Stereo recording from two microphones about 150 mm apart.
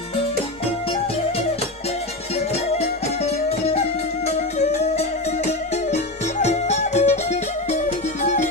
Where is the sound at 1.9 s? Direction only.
45° left (ahead or behind).